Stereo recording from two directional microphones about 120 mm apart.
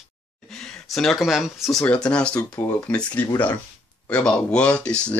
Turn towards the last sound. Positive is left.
turn(degrees=10)  # may be behind; listen again after turning